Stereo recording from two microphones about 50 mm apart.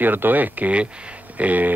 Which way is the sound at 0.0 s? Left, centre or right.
Right.